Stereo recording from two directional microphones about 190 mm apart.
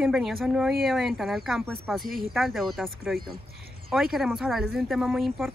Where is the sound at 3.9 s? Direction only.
Centre (ahead or behind).